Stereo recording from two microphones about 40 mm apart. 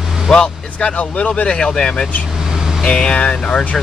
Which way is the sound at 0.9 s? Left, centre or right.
Left.